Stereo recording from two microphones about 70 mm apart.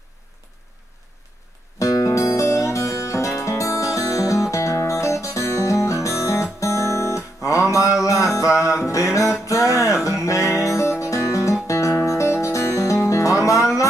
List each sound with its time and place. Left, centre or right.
1.8 s music: left